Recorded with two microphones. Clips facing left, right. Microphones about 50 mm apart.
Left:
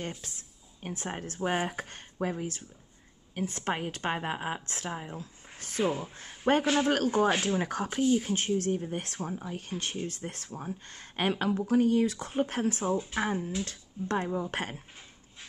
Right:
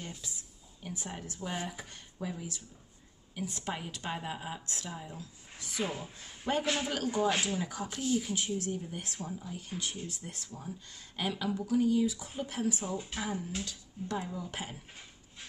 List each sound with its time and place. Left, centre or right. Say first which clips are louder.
0.2 s a woman's voice: even; left
5.9 s speech: left 8 dB; left
6.1 s a woman's voice: left 5 dB; left